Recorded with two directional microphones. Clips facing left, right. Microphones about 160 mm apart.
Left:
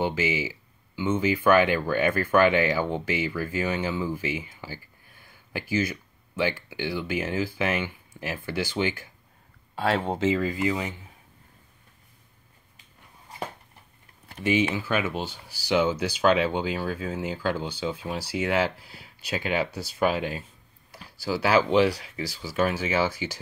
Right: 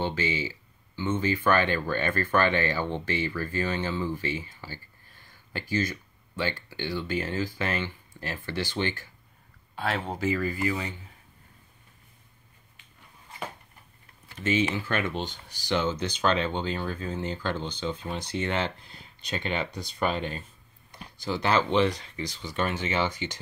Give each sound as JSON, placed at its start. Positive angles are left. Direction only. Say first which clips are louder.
{"t": 0.0, "sound": "speech", "louder": "left 3 dB", "side_deg": 10}
{"t": 9.8, "sound": "speech", "louder": "left 5 dB", "side_deg": 30}
{"t": 14.4, "sound": "speech", "louder": "left 2 dB", "side_deg": 15}